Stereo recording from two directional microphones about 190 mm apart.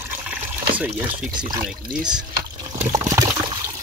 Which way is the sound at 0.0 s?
10° right (ahead or behind).